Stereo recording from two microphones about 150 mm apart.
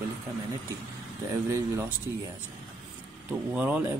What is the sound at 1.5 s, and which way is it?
Speech, 20° right (ahead or behind).